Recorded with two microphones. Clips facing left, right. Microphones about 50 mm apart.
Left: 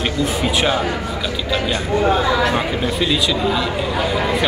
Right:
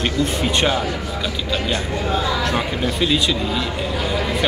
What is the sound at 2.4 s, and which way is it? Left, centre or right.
A man's voice, centre.